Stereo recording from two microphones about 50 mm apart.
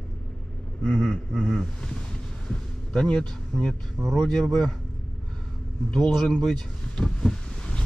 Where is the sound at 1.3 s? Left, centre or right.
Centre.